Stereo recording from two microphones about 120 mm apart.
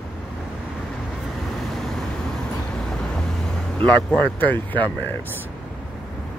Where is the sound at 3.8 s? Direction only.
10° left (ahead or behind).